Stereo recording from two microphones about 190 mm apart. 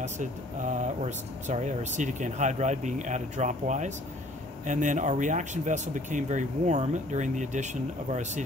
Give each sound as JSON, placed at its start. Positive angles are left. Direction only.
{"t": 0.0, "sound": "speech", "side_deg": -40}